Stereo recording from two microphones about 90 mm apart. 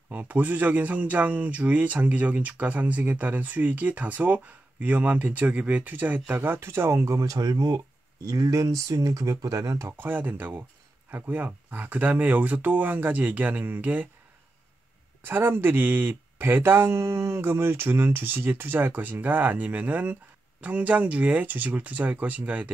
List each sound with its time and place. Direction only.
0.1 s speech: 20° right (ahead or behind); by 9.9 s 35° right (ahead or behind)
9.9 s speech: 20° right (ahead or behind)
15.2 s speech: 25° right (ahead or behind)